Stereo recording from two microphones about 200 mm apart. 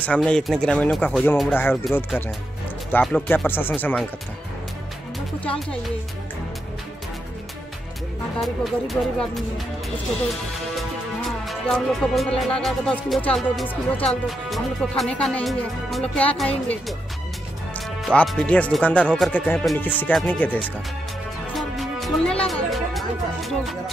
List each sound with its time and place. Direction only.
0.0 s speech: 5° left (ahead or behind)
2.9 s speech: 5° left (ahead or behind)
8.4 s speech: centre (ahead or behind)
11.2 s speech: centre (ahead or behind)
18.0 s speech: centre (ahead or behind)